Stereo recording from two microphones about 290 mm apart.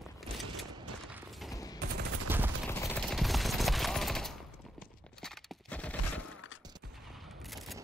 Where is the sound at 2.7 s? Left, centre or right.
Centre.